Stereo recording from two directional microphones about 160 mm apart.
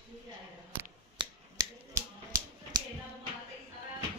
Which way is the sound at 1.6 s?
25° right (ahead or behind).